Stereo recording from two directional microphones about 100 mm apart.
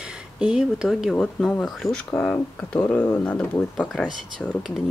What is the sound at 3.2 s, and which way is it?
Speech, 10° left (ahead or behind).